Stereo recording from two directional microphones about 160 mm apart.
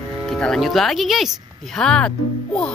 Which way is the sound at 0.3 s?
5° left (ahead or behind).